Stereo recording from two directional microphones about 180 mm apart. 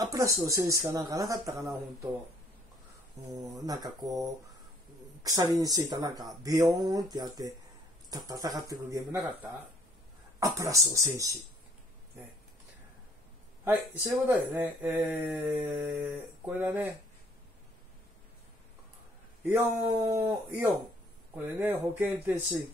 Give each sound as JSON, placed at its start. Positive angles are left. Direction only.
{"t": 0.0, "sound": "speech", "side_deg": -20}
{"t": 3.3, "sound": "speech", "side_deg": -20}
{"t": 10.5, "sound": "speech", "side_deg": -15}
{"t": 13.7, "sound": "speech", "side_deg": -10}
{"t": 19.8, "sound": "speech", "side_deg": -25}